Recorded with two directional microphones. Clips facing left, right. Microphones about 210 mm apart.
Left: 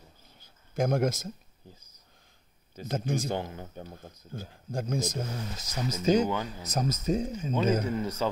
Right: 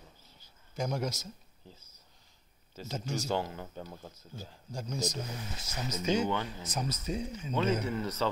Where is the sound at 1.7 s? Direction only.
15° left (ahead or behind).